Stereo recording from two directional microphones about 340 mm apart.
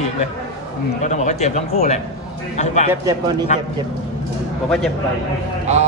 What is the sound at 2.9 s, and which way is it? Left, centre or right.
Speech, centre.